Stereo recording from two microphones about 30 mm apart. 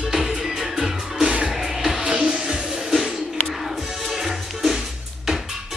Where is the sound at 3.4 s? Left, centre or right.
Centre.